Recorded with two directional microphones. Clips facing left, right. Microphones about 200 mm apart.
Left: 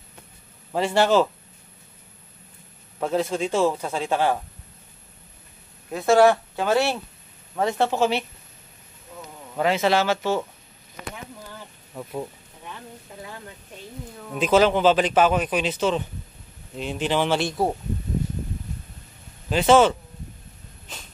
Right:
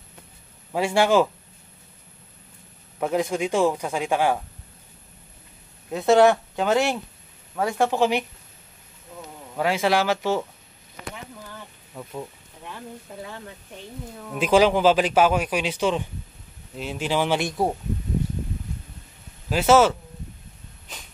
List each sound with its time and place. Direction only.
0.7 s speech: 10° right (ahead or behind)
3.0 s speech: 15° right (ahead or behind)
5.9 s speech: centre (ahead or behind)
6.1 s speech: 20° right (ahead or behind)
9.6 s speech: 10° right (ahead or behind)
11.9 s speech: 10° left (ahead or behind)
14.3 s speech: 10° right (ahead or behind)
19.5 s speech: 5° right (ahead or behind)